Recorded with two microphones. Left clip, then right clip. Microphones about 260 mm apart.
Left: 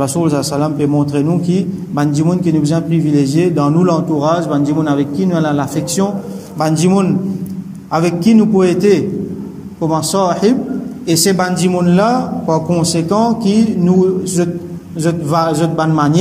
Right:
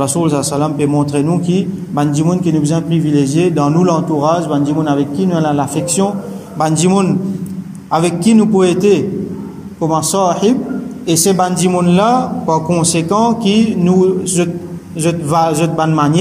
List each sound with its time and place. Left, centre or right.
0.0 s a man's voice: centre